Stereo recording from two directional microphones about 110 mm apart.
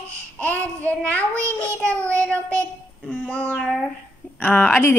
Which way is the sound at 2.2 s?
10° left (ahead or behind).